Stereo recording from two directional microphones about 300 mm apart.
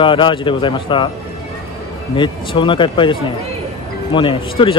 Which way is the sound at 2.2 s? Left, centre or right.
Centre.